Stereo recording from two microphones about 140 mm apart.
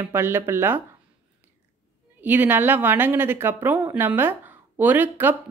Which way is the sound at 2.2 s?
15° right (ahead or behind).